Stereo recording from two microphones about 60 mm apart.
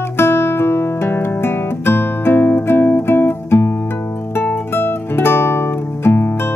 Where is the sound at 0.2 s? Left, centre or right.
Left.